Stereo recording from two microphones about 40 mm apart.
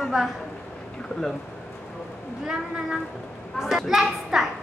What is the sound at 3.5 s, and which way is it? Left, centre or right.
Female singing, centre.